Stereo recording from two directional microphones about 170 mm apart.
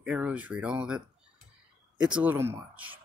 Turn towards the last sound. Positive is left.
turn(degrees=-10)  # may be behind; listen again after turning